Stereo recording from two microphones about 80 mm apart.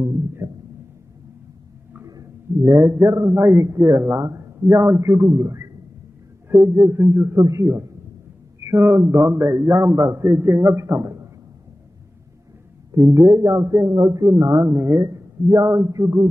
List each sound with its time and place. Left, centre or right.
0.0 s music: right
2.0 s a man's voice: right
7.3 s speech: right
7.6 s a man's voice: right
12.9 s a man's voice: right
14.7 s speech: right
15.0 s a man's voice: right